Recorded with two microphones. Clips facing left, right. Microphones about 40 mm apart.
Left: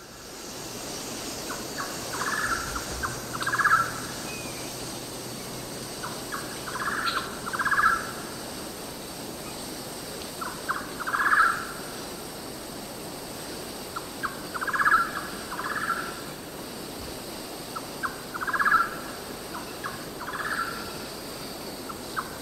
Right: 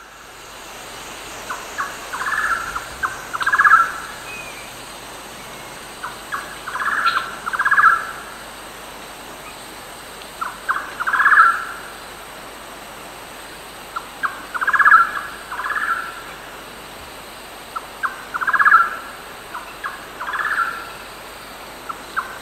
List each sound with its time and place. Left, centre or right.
1.5 s bird: right
6.0 s bird: right
10.4 s bird: right
13.9 s bird: right
18.0 s owl: right
19.5 s turkey: right